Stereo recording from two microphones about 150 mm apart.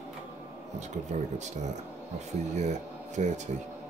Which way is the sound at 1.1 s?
50° right (ahead or behind).